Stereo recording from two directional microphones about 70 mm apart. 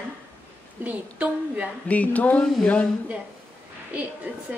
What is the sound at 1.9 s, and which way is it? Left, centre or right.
Speech, left.